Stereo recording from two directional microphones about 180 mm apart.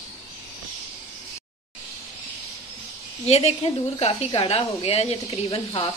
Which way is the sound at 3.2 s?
35° left (ahead or behind).